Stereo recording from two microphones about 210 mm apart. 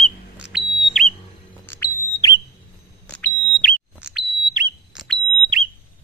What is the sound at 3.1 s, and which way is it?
Smoke detector, 5° left (ahead or behind).